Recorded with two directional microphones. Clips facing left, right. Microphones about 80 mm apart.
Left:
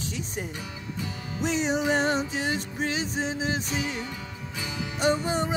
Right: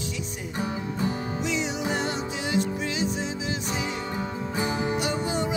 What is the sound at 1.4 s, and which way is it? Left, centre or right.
Music, left.